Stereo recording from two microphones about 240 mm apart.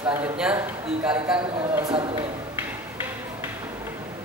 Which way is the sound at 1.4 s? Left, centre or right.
Right.